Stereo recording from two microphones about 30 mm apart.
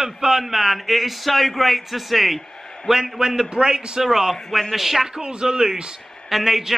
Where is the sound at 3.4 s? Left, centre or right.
Right.